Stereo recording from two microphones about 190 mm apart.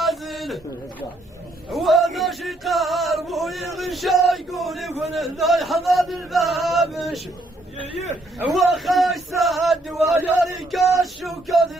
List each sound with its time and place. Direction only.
0.0 s a sound: centre (ahead or behind)
1.7 s male singing: centre (ahead or behind)
8.4 s male singing: centre (ahead or behind)